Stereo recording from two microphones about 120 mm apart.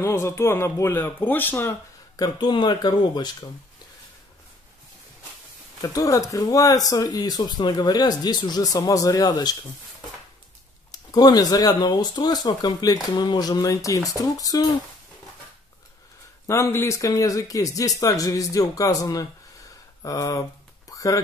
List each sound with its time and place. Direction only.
0.0 s speech: 25° left (ahead or behind)
2.1 s speech: 35° left (ahead or behind)
5.8 s speech: 30° left (ahead or behind)
10.9 s speech: 30° left (ahead or behind)
16.4 s speech: 25° left (ahead or behind)
20.9 s a sound: 30° left (ahead or behind)